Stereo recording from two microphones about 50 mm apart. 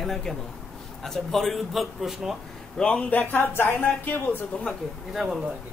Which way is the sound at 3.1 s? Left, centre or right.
Left.